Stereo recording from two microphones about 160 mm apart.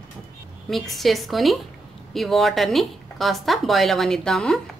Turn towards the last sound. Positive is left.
turn(degrees=5)  # may be behind; listen again after turning